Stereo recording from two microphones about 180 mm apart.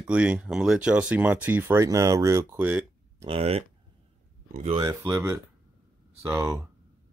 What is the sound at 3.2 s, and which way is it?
Speech, 30° right (ahead or behind).